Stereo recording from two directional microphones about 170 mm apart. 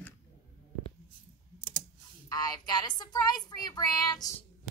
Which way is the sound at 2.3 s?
25° left (ahead or behind).